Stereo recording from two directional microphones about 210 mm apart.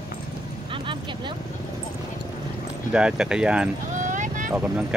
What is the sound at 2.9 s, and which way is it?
Speech, 5° right (ahead or behind).